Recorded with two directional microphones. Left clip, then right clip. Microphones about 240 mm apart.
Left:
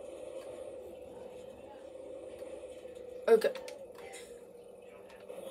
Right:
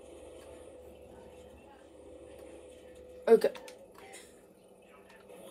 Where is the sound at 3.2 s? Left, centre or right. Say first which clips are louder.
Right 2 dB; right.